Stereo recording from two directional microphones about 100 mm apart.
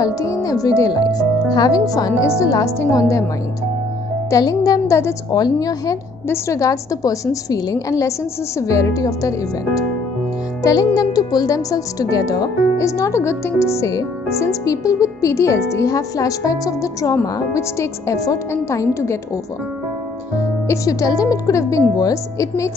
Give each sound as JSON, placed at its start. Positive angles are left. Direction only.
{"t": 0.0, "sound": "speech", "side_deg": 35}
{"t": 4.3, "sound": "speech", "side_deg": 35}
{"t": 6.2, "sound": "speech", "side_deg": 25}
{"t": 10.6, "sound": "speech", "side_deg": 35}
{"t": 20.6, "sound": "speech", "side_deg": 30}